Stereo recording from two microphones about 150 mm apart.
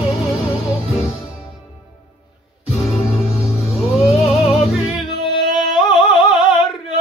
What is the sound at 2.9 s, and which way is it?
Music, 40° left (ahead or behind).